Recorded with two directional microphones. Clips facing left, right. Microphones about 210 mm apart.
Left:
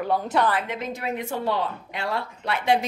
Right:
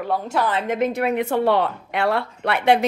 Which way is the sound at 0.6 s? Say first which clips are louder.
Right 9 dB; 55° right (ahead or behind).